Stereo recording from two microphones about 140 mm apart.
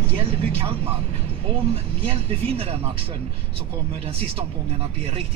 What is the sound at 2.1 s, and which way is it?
Speech, 45° right (ahead or behind).